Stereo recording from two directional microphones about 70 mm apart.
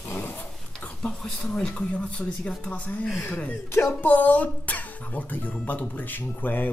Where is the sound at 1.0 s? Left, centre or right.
Centre.